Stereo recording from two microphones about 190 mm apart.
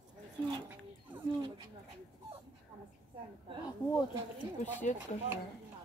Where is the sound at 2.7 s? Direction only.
25° right (ahead or behind).